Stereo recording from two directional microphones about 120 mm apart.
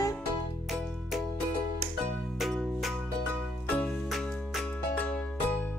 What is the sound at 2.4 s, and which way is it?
Music, centre (ahead or behind).